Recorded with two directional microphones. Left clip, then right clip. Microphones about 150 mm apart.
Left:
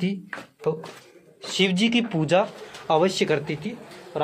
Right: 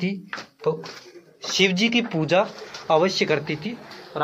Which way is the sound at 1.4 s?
20° left (ahead or behind).